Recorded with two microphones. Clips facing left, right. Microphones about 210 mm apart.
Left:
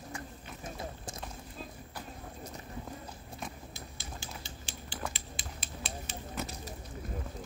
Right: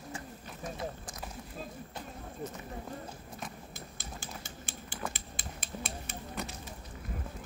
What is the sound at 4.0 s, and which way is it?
Typing, 50° right (ahead or behind).